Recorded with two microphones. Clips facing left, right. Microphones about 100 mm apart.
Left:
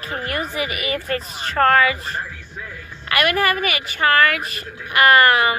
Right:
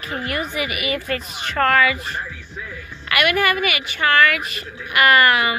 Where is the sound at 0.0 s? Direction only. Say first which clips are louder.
Even; 35° left (ahead or behind).